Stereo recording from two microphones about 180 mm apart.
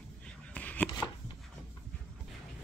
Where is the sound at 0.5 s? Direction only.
10° left (ahead or behind).